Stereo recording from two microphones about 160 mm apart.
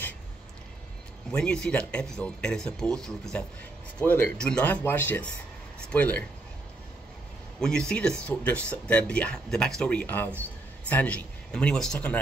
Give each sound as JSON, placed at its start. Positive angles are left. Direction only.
{"t": 1.3, "sound": "speech", "side_deg": 5}
{"t": 7.6, "sound": "speech", "side_deg": 5}